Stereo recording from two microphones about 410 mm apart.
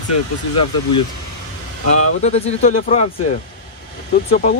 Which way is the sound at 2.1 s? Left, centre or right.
Centre.